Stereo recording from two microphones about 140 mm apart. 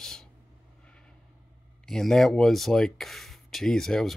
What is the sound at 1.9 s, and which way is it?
Speech, 5° left (ahead or behind).